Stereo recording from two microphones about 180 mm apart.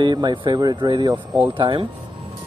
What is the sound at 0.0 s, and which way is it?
Speech, 25° right (ahead or behind).